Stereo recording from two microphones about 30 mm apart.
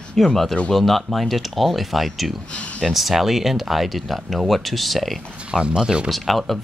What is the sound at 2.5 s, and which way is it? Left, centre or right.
Speech, left.